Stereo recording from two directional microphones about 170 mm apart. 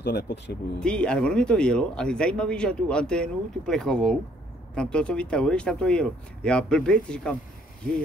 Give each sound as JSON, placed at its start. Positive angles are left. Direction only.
{"t": 0.0, "sound": "speech", "side_deg": 75}
{"t": 0.7, "sound": "speech", "side_deg": 5}